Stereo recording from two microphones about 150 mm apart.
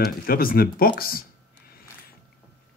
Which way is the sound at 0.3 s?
75° left (ahead or behind).